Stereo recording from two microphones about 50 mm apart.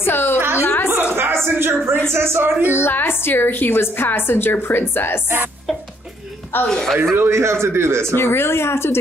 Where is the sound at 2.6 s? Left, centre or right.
Left.